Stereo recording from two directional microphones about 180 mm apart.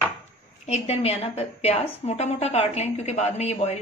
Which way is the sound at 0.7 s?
35° left (ahead or behind).